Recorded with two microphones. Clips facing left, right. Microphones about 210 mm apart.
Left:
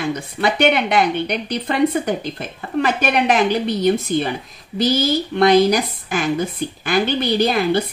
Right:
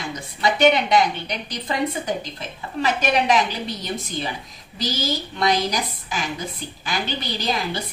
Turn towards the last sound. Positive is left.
turn(degrees=55)  # may be behind; listen again after turning